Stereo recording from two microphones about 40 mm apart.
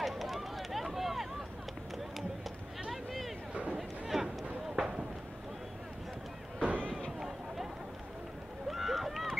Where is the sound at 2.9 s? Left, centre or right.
Centre.